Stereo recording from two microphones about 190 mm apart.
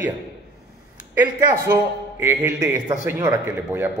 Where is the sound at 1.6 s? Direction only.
15° right (ahead or behind).